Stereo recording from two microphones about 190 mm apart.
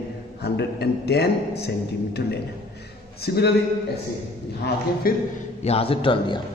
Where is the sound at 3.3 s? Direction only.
60° left (ahead or behind).